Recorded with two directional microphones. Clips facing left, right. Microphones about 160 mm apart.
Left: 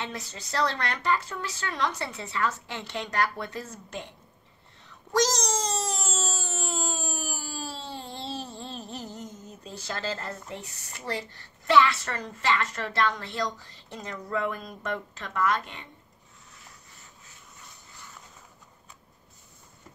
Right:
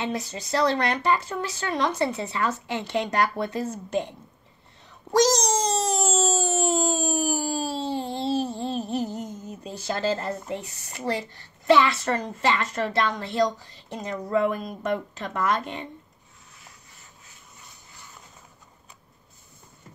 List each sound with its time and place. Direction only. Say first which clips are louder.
0.0 s speech: right 7 dB; 15° right (ahead or behind)
5.1 s a sound: right 5 dB; 15° right (ahead or behind)
8.5 s speech: right 11 dB; 15° right (ahead or behind)